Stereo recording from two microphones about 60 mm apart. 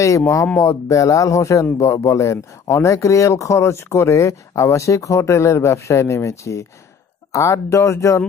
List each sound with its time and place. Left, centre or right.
0.6 s a man's voice: left